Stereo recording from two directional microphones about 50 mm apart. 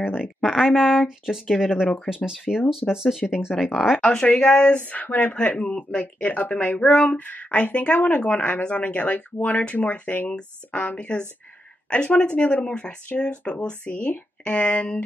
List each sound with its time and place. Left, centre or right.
0.4 s speech: centre
4.0 s speech: centre
4.7 s speech: left
10.1 s speech: centre
10.7 s speech: left